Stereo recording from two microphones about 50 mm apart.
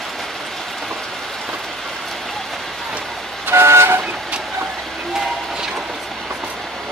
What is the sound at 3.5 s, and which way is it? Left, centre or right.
Vehicle, right.